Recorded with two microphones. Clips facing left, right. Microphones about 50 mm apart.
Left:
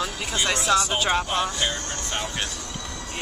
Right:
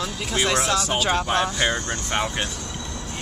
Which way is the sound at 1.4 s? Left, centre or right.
Right.